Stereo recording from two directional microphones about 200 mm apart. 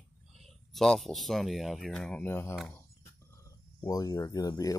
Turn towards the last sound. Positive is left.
turn(degrees=20)  # may be behind; listen again after turning